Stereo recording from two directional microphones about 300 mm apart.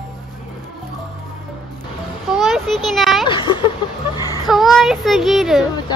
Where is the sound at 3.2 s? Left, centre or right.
Centre.